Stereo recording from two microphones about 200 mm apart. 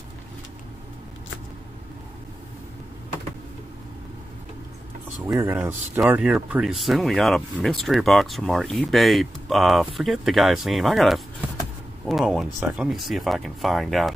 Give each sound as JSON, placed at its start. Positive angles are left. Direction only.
{"t": 5.2, "sound": "speech", "side_deg": -10}